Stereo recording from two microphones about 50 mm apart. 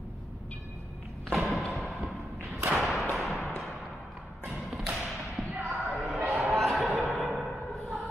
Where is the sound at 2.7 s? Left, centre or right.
Centre.